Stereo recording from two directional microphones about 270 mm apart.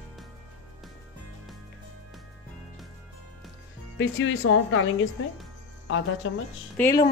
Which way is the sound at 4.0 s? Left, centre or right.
Left.